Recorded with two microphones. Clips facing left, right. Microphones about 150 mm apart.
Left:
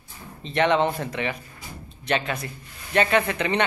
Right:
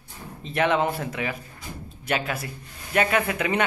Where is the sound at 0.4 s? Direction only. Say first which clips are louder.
Left 2 dB; 5° right (ahead or behind).